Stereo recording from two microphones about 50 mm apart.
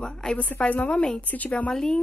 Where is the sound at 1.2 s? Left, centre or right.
Left.